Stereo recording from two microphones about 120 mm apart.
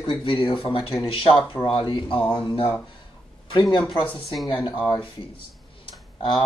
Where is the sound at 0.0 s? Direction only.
45° left (ahead or behind).